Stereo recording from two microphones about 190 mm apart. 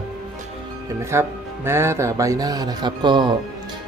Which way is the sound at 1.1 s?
10° right (ahead or behind).